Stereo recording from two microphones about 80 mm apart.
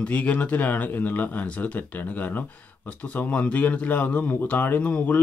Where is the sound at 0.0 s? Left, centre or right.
Centre.